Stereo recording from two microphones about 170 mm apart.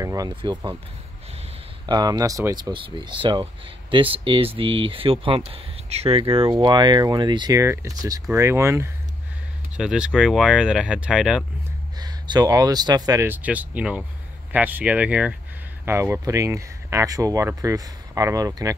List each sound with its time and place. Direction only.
0.0 s speech: 20° right (ahead or behind)
1.9 s speech: 25° right (ahead or behind)
9.8 s speech: 5° right (ahead or behind)
12.0 s speech: 25° right (ahead or behind)